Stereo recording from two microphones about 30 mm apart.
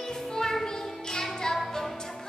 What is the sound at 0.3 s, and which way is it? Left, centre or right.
Music, centre.